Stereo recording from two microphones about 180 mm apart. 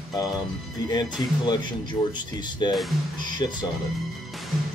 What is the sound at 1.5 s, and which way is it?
Speech, 25° left (ahead or behind).